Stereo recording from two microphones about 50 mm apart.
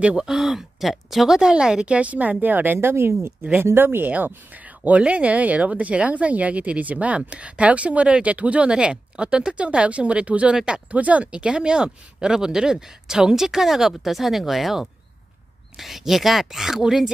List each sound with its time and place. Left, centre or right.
0.0 s speech: centre; by 3.3 s right
3.6 s speech: right
4.8 s speech: right
10.5 s speech: centre
10.9 s speech: right
11.3 s speech: centre